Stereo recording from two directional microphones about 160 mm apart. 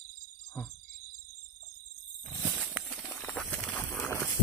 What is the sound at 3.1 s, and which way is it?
Walk, 10° left (ahead or behind).